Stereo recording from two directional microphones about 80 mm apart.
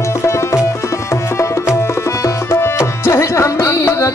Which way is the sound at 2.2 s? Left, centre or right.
Left.